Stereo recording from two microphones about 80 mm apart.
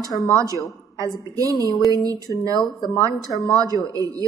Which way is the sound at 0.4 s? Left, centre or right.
Right.